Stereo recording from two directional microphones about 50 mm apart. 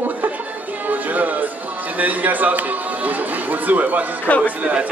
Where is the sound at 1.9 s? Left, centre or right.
Right.